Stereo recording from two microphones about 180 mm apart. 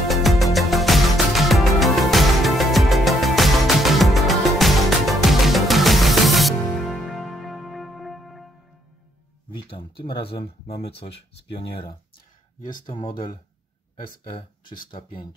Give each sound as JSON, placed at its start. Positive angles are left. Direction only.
{"t": 0.1, "sound": "music", "side_deg": 0}
{"t": 9.5, "sound": "speech", "side_deg": 30}